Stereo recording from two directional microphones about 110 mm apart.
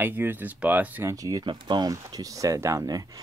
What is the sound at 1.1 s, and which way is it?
Speech, 30° right (ahead or behind).